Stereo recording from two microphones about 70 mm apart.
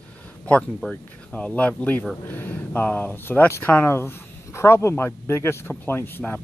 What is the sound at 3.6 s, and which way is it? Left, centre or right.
Speech, left.